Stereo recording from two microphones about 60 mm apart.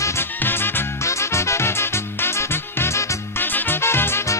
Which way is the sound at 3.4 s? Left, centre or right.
Left.